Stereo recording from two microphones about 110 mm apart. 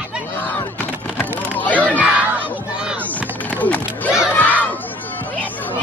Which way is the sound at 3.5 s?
15° left (ahead or behind).